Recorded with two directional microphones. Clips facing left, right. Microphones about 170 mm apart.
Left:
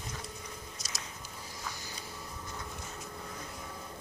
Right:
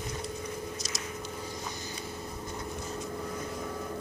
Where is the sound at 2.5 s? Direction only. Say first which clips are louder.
Right 6 dB; 30° right (ahead or behind).